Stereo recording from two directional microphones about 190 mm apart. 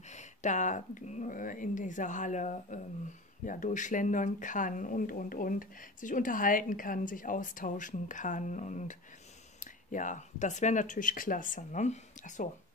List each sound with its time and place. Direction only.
0.1 s speech: 40° left (ahead or behind)